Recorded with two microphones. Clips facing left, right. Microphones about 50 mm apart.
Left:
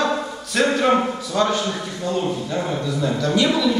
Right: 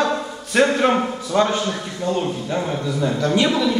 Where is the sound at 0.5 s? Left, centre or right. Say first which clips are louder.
Right 1 dB; right.